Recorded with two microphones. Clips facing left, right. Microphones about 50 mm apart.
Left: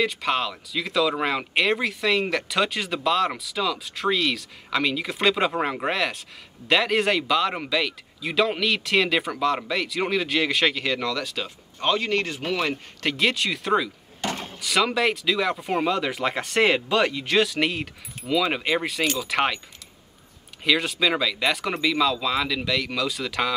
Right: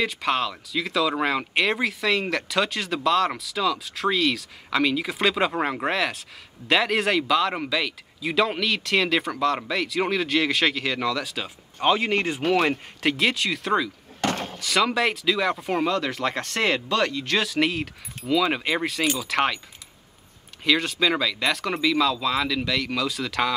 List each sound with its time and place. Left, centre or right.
0.0 s speech: centre
11.9 s speech: centre
12.4 s speech: right
13.0 s speech: centre
14.2 s a sound: right
14.6 s speech: centre
20.6 s speech: centre